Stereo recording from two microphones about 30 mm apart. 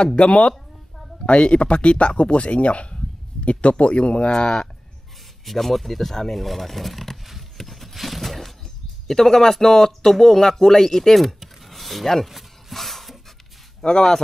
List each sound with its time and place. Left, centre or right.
0.0 s speech: left
4.3 s speech: left
5.4 s speech: centre
7.5 s a sound: centre
9.0 s speech: centre
11.2 s a sound: centre
12.3 s rub: centre
12.7 s a sound: centre
13.8 s speech: centre